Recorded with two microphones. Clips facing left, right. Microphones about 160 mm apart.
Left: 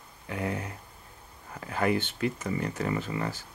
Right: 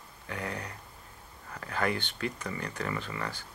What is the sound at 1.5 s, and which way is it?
Speech, 15° left (ahead or behind).